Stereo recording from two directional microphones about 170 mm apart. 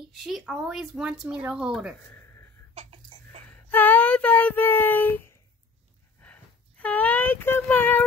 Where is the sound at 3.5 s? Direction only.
10° left (ahead or behind).